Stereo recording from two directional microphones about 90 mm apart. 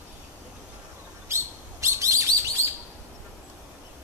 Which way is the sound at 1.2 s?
30° right (ahead or behind).